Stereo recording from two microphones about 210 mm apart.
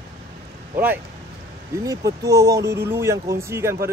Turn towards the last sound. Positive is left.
turn(degrees=-10)  # may be behind; listen again after turning